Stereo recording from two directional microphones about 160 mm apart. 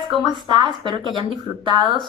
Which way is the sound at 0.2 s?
30° right (ahead or behind).